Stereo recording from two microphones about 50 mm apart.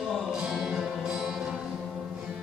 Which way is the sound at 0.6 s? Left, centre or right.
Centre.